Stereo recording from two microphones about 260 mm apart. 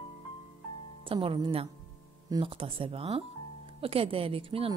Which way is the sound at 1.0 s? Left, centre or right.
Centre.